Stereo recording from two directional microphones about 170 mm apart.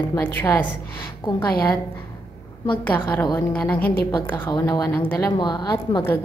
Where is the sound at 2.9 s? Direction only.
10° left (ahead or behind).